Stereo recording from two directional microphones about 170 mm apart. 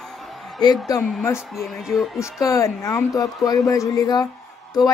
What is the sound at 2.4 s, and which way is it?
A woman's voice, 20° left (ahead or behind).